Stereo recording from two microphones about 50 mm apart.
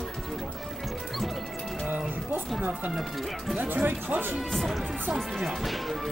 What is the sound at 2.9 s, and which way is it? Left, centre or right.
Speech, centre.